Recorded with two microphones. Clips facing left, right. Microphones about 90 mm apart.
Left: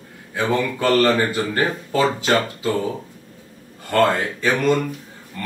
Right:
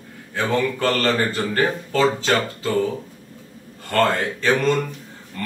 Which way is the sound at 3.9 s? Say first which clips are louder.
Left 2 dB; 15° left (ahead or behind).